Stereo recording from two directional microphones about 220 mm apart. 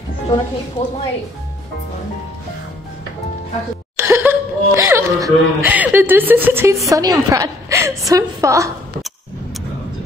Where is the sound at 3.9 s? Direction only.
10° right (ahead or behind).